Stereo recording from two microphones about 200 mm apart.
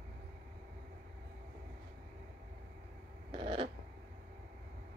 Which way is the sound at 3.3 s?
25° right (ahead or behind).